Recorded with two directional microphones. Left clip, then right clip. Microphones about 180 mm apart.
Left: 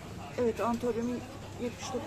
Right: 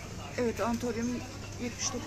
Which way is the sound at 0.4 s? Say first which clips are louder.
Left 1 dB; centre (ahead or behind).